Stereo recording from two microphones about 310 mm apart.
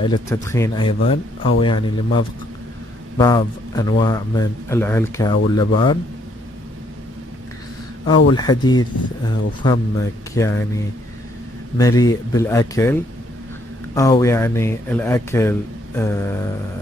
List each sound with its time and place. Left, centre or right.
0.0 s speech: centre
8.3 s speech: centre
11.8 s speech: centre